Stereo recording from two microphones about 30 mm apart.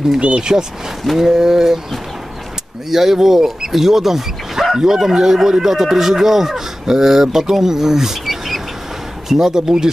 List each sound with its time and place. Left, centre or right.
0.2 s speech: right
1.2 s speech: centre
2.9 s speech: centre
9.3 s speech: centre